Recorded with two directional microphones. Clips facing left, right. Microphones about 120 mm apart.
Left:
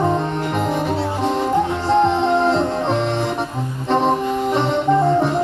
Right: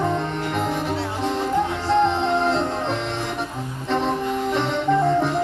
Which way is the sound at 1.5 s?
25° left (ahead or behind).